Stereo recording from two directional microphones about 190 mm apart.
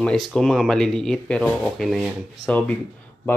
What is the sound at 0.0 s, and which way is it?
Speech, 5° left (ahead or behind).